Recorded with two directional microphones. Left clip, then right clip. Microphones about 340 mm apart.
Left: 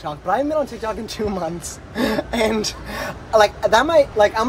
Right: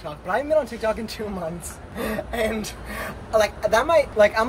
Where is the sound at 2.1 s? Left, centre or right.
Centre.